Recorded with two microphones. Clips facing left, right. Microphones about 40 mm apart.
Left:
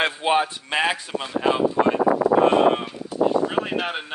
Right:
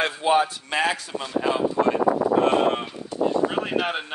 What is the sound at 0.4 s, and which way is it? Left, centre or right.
Speech, left.